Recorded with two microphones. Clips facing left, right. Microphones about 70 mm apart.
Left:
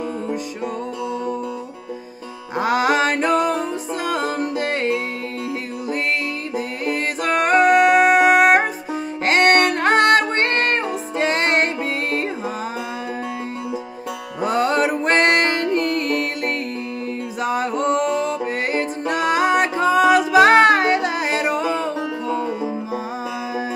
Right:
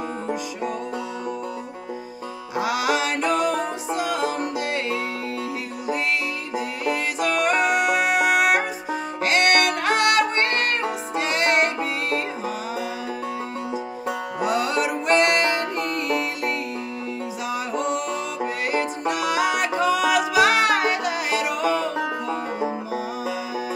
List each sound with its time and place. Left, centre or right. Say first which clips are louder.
2.5 s music: left 5 dB; left
6.5 s music: even; left
14.4 s music: left 5 dB; left
21.9 s music: left 2 dB; right